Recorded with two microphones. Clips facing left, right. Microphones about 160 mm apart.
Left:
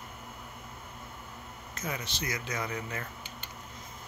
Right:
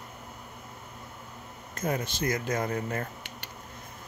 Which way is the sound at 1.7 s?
50° right (ahead or behind).